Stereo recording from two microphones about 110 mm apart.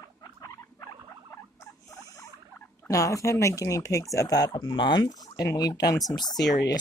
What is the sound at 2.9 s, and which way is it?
Speech, 30° left (ahead or behind).